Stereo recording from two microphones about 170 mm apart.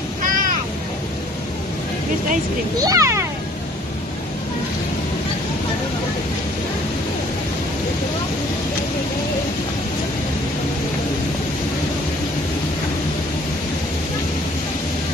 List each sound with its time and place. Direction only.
2.8 s a child's voice: 20° right (ahead or behind)